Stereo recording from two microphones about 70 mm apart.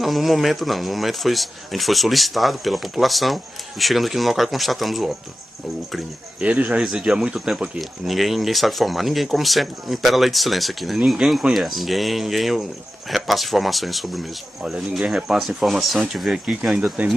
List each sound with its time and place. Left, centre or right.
0.0 s speech: centre
6.4 s speech: centre
6.8 s speech: centre
14.6 s speech: centre
16.7 s speech: centre